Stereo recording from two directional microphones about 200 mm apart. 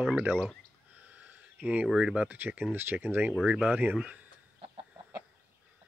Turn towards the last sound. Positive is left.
turn(degrees=-30)  # may be behind; listen again after turning